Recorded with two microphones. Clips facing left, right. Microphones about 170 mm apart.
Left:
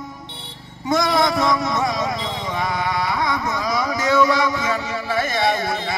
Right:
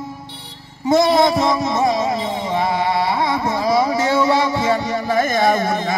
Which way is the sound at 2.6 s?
30° right (ahead or behind).